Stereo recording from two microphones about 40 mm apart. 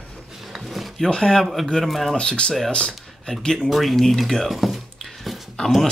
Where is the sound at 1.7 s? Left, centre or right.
Centre.